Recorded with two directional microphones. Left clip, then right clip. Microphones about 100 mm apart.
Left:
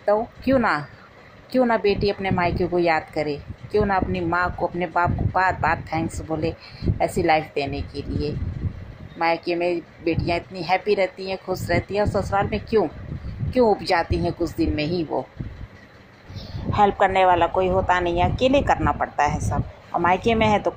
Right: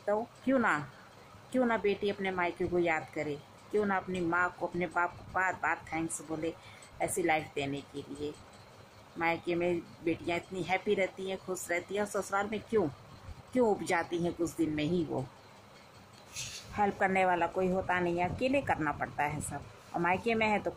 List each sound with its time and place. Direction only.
0.0 s a woman's voice: 20° left (ahead or behind)
6.3 s a woman's voice: 15° left (ahead or behind)
16.7 s a woman's voice: 35° left (ahead or behind)